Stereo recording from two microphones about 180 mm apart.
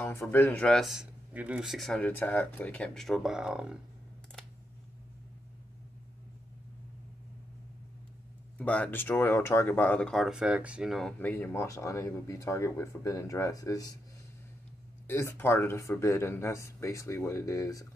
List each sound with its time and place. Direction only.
0.0 s speech: 15° left (ahead or behind); by 3.7 s 5° right (ahead or behind)
8.5 s speech: 10° left (ahead or behind)
15.0 s speech: 15° left (ahead or behind)